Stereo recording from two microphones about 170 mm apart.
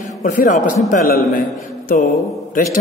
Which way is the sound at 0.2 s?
50° left (ahead or behind).